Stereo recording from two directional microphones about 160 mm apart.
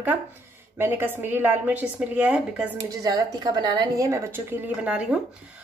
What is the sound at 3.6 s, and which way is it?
Speech, 25° right (ahead or behind).